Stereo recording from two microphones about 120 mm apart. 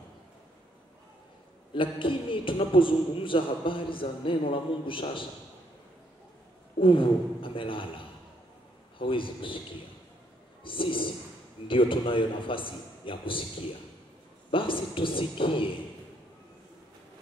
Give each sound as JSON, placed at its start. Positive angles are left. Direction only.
{"t": 1.7, "sound": "a man's voice", "side_deg": 45}
{"t": 6.8, "sound": "a man's voice", "side_deg": 45}
{"t": 8.9, "sound": "a man's voice", "side_deg": 45}
{"t": 10.6, "sound": "a man's voice", "side_deg": 45}
{"t": 14.5, "sound": "a man's voice", "side_deg": 45}